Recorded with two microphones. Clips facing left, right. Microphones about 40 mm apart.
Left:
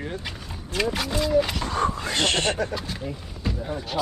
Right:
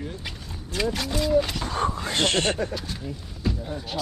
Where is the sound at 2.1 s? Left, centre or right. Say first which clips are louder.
Even; left.